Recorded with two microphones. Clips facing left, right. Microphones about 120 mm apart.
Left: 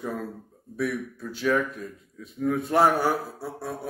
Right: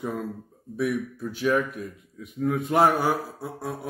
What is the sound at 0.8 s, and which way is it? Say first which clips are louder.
A man's voice: right 2 dB; 15° right (ahead or behind).